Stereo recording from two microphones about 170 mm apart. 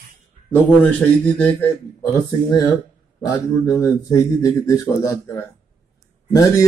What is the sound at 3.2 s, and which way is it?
A man's voice, 20° left (ahead or behind).